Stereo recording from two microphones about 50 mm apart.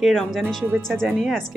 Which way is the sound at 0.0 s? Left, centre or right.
Centre.